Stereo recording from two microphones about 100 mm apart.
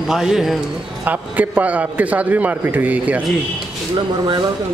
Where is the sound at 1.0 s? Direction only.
15° right (ahead or behind).